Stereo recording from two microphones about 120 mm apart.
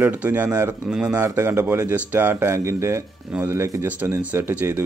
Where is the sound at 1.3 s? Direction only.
20° right (ahead or behind).